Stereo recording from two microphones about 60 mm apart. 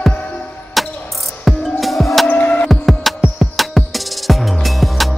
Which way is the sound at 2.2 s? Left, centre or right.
Left.